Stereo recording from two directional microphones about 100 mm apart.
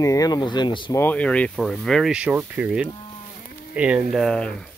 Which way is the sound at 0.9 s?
15° left (ahead or behind).